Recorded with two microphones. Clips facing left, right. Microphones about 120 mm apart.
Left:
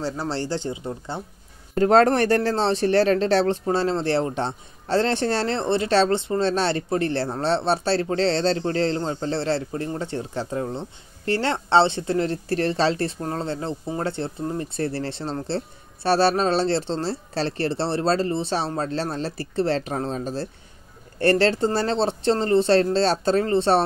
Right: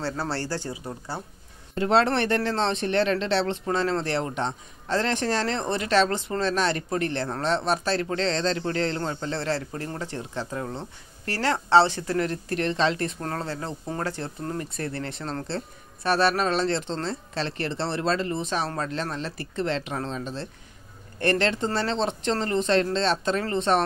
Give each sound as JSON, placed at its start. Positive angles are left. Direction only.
{"t": 0.0, "sound": "speech", "side_deg": 15}
{"t": 1.8, "sound": "speech", "side_deg": 45}
{"t": 3.6, "sound": "speech", "side_deg": 30}